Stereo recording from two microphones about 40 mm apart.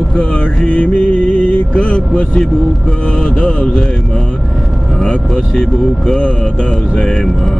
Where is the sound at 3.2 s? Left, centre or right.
Left.